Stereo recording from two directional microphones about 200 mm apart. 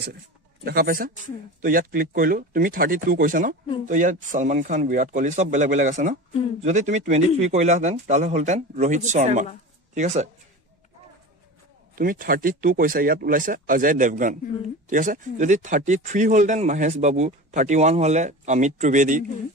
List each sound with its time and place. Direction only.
0.7 s speech: 45° right (ahead or behind)
11.9 s speech: 45° right (ahead or behind)